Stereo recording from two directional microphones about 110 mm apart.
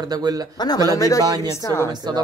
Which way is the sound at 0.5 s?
35° left (ahead or behind).